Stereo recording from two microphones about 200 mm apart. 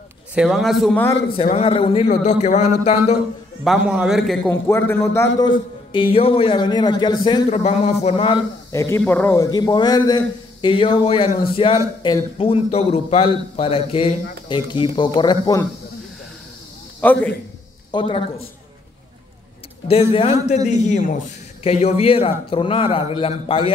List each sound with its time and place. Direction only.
0.3 s a man's voice: 5° right (ahead or behind)
1.3 s speech: 30° left (ahead or behind)
3.6 s a man's voice: 5° right (ahead or behind)
4.5 s a man's voice: 10° left (ahead or behind)
5.5 s a man's voice: 25° left (ahead or behind)
7.5 s speech: 35° left (ahead or behind)
8.7 s a man's voice: 15° left (ahead or behind)
17.0 s a man's voice: 10° left (ahead or behind)
17.9 s a man's voice: 30° left (ahead or behind)
19.9 s a man's voice: 30° left (ahead or behind)